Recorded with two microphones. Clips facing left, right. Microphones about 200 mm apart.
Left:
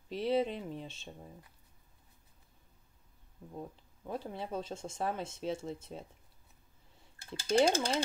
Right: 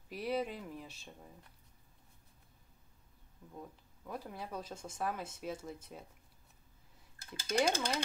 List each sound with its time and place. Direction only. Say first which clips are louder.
0.1 s speech: left 5 dB; 25° left (ahead or behind)
3.5 s speech: left 5 dB; 25° left (ahead or behind)
7.2 s speech: left 5 dB; 30° left (ahead or behind)